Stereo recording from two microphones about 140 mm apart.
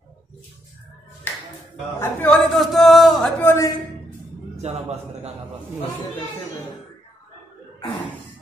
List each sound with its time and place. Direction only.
2.0 s a man's voice: 15° left (ahead or behind)
2.5 s a sound: centre (ahead or behind)
3.3 s a man's voice: 20° left (ahead or behind)
4.6 s a man's voice: 50° right (ahead or behind)